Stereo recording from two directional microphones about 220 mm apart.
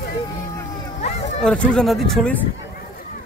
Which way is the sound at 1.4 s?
5° left (ahead or behind).